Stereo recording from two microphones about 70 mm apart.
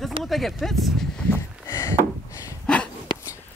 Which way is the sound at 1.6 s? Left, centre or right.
Left.